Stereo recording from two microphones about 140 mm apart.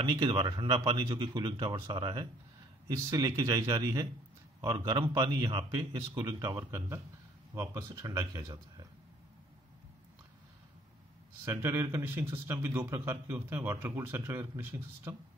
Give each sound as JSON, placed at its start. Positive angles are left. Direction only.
{"t": 0.0, "sound": "a man's voice", "side_deg": -35}
{"t": 11.4, "sound": "speech", "side_deg": -20}